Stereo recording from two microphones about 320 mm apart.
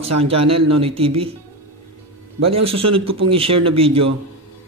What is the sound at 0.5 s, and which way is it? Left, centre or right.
Speech, right.